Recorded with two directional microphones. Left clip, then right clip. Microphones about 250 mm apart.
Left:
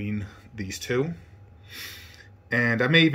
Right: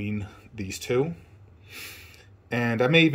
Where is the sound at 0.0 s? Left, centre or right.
Centre.